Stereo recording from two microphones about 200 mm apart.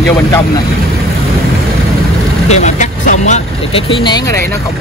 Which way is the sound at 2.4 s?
35° left (ahead or behind).